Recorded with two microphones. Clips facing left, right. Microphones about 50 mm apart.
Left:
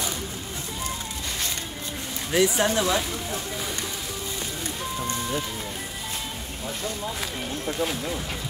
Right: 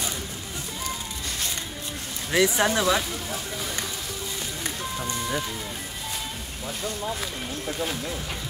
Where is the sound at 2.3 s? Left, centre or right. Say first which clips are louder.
Even; right.